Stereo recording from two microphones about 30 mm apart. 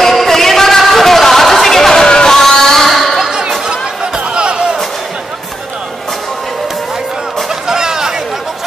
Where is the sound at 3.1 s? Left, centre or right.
Right.